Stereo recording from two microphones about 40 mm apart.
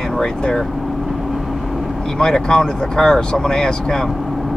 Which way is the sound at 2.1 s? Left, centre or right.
Centre.